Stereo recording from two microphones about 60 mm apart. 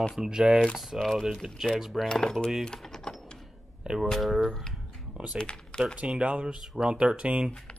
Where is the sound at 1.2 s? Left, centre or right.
Centre.